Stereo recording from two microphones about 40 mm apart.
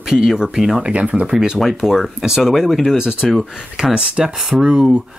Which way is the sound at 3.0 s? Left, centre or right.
Centre.